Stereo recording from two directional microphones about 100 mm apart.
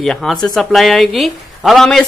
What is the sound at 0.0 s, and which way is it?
Speech, 5° left (ahead or behind).